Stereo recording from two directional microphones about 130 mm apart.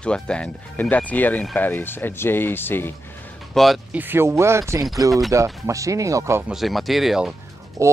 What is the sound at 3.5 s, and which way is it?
Speech, 5° left (ahead or behind).